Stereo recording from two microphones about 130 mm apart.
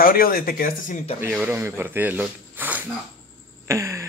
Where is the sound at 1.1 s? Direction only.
15° right (ahead or behind).